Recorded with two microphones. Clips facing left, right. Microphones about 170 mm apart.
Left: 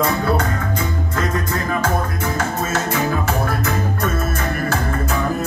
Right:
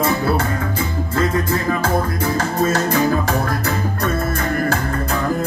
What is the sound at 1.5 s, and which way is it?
Music, 35° right (ahead or behind).